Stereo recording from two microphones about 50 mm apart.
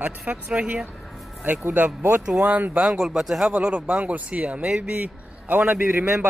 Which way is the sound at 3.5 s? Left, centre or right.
Centre.